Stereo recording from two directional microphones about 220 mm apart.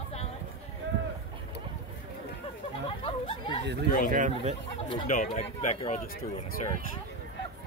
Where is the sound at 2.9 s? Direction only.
25° left (ahead or behind).